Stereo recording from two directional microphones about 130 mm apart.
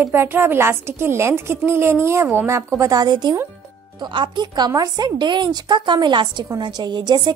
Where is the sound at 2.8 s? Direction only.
30° right (ahead or behind).